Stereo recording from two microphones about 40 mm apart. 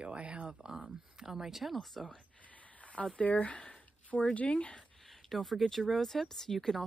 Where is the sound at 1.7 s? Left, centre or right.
Centre.